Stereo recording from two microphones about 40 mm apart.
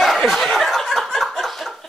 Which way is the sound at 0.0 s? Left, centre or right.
Centre.